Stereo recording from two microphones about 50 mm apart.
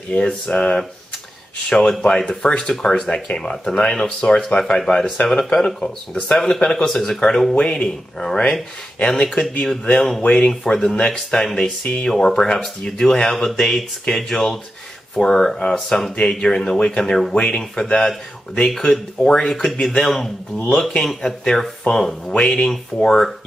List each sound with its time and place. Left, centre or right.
0.2 s speech: centre
5.1 s speech: left
5.4 s speech: centre
22.3 s speech: centre